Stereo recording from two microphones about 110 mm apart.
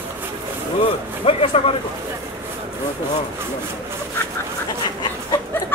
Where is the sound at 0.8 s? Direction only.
60° left (ahead or behind).